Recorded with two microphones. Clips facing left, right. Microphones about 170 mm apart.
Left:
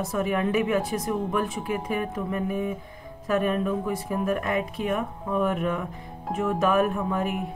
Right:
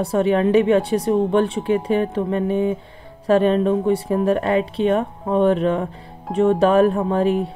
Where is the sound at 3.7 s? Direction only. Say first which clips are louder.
Right 9 dB; 30° right (ahead or behind).